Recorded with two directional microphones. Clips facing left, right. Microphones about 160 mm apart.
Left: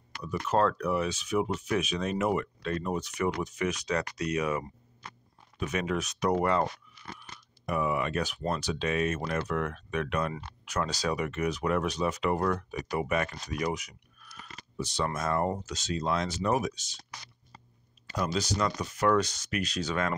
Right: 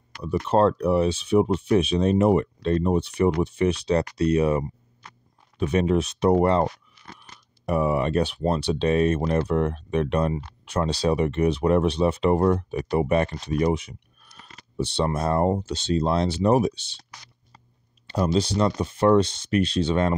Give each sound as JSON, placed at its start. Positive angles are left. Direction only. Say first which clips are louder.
{"t": 0.2, "sound": "speech", "louder": "right 7 dB", "side_deg": -30}
{"t": 18.0, "sound": "speech", "louder": "right 8 dB", "side_deg": -30}